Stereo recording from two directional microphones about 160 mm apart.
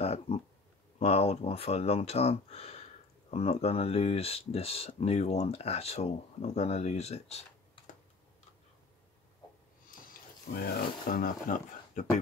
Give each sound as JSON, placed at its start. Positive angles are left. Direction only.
{"t": 0.0, "sound": "a sound", "side_deg": 40}
{"t": 0.9, "sound": "speech", "side_deg": 40}
{"t": 9.8, "sound": "speech", "side_deg": 65}